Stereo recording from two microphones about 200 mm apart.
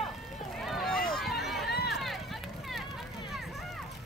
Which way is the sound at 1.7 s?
55° left (ahead or behind).